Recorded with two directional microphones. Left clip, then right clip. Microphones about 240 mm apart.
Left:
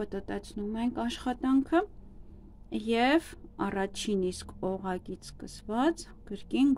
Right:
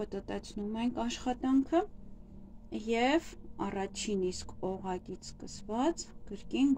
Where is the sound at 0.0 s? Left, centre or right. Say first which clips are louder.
Left 2 dB; centre.